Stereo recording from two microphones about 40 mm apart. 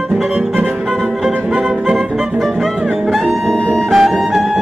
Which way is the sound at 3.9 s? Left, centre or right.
Centre.